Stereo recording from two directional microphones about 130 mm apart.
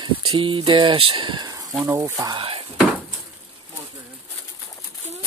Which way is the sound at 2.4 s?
45° right (ahead or behind).